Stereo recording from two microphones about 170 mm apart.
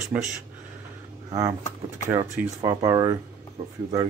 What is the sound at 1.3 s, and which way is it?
Speech, 20° right (ahead or behind).